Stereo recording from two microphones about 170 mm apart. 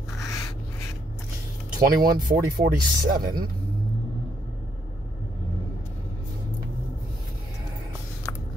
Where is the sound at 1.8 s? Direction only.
60° right (ahead or behind).